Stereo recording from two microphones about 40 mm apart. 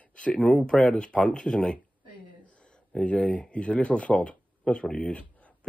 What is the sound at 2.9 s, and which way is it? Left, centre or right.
Speech, left.